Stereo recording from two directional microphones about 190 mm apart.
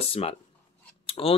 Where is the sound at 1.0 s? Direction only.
30° left (ahead or behind).